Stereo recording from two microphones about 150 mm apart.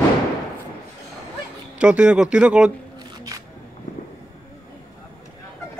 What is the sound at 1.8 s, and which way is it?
Speech, 5° right (ahead or behind).